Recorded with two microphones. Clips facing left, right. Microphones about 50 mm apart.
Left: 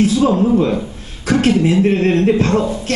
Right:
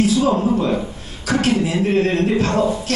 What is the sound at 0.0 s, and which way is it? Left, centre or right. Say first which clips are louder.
Speech: left 3 dB; left.